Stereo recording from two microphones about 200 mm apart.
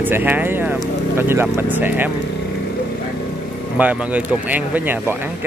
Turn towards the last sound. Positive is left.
turn(degrees=-10)  # may be behind; listen again after turning